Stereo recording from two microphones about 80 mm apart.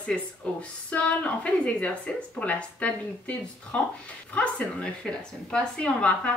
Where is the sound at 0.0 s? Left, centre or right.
Centre.